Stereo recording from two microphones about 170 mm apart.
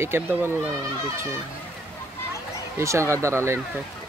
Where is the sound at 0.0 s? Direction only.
15° right (ahead or behind).